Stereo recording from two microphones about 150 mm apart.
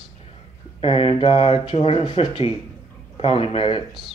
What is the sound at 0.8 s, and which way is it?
Speech, 40° left (ahead or behind).